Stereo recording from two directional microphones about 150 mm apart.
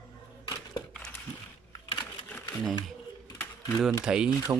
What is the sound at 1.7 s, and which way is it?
Typing, 30° left (ahead or behind).